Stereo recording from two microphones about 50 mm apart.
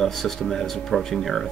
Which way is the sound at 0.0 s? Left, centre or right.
Centre.